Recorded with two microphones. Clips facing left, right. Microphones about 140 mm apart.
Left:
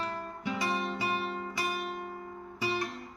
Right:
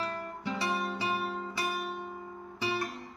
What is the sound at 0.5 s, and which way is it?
Music, 5° left (ahead or behind).